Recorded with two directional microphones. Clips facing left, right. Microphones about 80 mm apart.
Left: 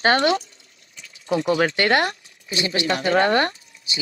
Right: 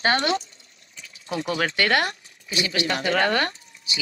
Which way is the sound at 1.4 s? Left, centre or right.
Left.